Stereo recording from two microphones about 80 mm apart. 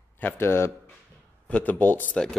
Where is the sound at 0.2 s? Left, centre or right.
Left.